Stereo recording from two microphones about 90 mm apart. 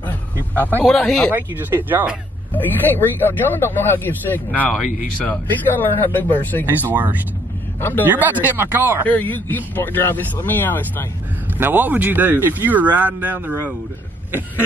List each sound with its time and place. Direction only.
0.0 s a sound: 20° left (ahead or behind)
0.8 s speech: 5° left (ahead or behind)
1.3 s speech: 20° right (ahead or behind)
2.5 s a man's voice: 20° left (ahead or behind)
6.8 s speech: 20° right (ahead or behind)
9.0 s a man's voice: 20° left (ahead or behind)
11.5 s speech: 20° right (ahead or behind)